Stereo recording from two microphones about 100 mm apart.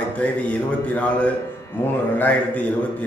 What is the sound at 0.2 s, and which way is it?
A man's voice, 15° left (ahead or behind).